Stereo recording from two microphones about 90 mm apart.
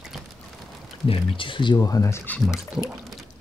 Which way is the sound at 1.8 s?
40° left (ahead or behind).